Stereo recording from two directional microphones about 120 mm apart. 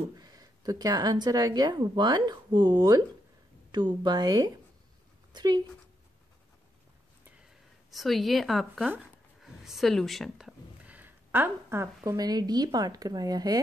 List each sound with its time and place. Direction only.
0.2 s speech: 30° right (ahead or behind)
7.9 s speech: centre (ahead or behind)
9.4 s a sound: centre (ahead or behind); by 12.2 s 20° right (ahead or behind)
12.2 s speech: 35° right (ahead or behind)